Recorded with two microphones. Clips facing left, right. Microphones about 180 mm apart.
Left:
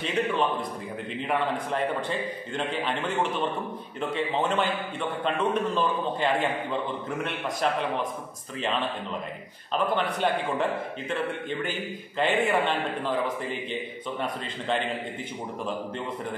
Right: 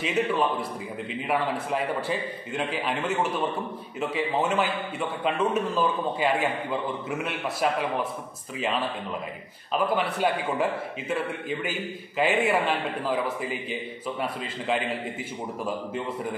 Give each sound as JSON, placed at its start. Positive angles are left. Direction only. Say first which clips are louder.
{"t": 0.0, "sound": "a man's voice", "louder": "right 1 dB", "side_deg": -5}